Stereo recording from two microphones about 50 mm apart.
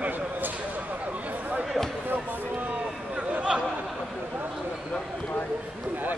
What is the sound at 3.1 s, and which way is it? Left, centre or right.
Chatter, right.